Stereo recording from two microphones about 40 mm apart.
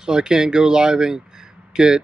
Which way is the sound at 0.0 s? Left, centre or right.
Centre.